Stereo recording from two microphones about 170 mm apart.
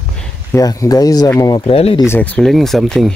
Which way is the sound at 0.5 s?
20° left (ahead or behind).